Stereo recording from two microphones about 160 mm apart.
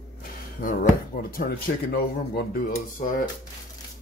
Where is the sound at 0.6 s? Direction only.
60° left (ahead or behind).